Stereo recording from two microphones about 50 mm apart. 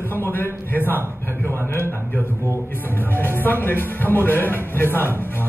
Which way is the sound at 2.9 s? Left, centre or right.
Left.